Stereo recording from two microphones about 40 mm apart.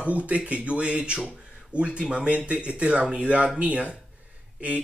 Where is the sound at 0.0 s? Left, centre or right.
Right.